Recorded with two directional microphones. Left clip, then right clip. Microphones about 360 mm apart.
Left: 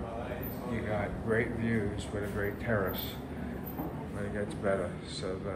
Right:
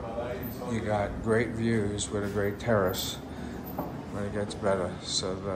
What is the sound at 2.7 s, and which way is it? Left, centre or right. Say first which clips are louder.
Speech: right 6 dB; centre.